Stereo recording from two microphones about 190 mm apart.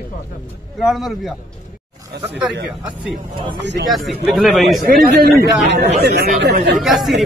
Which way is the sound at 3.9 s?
Centre (ahead or behind).